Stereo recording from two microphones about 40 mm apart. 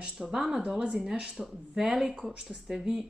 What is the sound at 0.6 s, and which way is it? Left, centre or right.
Speech, right.